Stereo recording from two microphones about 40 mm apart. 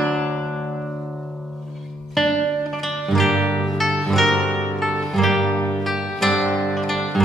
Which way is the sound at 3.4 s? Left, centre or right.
Centre.